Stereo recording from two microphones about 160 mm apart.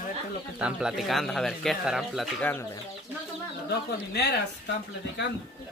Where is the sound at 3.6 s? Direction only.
90° left.